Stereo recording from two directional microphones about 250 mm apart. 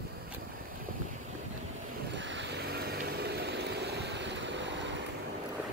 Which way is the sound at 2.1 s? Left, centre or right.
Right.